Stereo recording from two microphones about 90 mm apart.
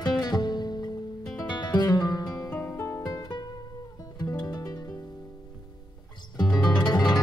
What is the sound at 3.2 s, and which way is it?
Music, 55° left (ahead or behind).